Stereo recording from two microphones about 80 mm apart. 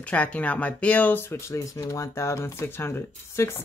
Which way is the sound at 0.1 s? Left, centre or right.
Centre.